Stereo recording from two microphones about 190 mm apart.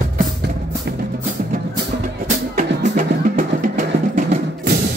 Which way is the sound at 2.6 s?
45° right (ahead or behind).